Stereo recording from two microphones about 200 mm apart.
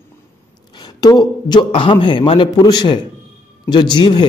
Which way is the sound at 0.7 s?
20° left (ahead or behind).